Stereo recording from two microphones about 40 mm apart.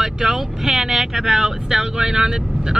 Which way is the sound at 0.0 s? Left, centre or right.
Centre.